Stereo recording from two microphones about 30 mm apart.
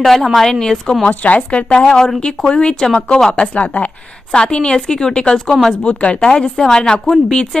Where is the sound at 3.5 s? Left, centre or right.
Left.